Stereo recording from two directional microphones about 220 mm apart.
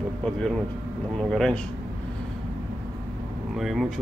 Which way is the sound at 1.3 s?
Centre (ahead or behind).